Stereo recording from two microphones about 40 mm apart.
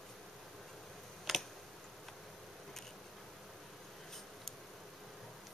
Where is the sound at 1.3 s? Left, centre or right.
Centre.